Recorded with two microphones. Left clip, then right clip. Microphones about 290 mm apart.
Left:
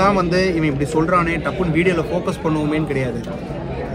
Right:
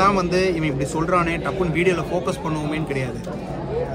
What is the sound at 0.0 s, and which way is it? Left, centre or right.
A man's voice, centre.